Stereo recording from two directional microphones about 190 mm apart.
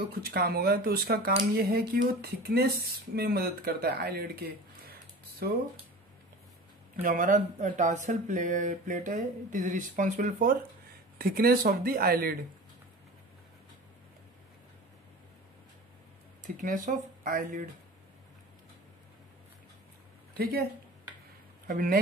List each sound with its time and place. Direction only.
0.2 s speech: 55° right (ahead or behind)
7.0 s speech: 45° right (ahead or behind)
16.4 s speech: 40° right (ahead or behind)
21.6 s speech: 45° right (ahead or behind)